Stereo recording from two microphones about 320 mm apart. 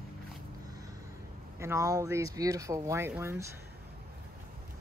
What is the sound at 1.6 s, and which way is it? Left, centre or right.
Speech, centre.